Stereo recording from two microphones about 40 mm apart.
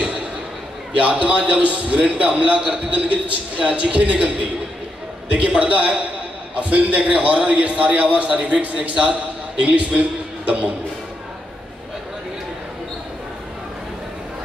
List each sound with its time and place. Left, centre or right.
1.2 s a man's voice: right